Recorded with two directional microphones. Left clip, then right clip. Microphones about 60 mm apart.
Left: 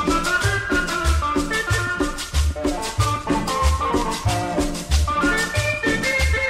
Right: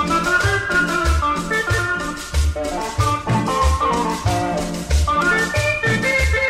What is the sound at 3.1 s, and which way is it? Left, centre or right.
Music, right.